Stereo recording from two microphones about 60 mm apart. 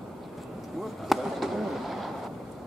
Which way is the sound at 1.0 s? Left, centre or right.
Centre.